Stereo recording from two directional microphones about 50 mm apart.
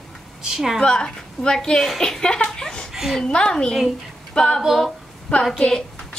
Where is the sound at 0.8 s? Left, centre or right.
Centre.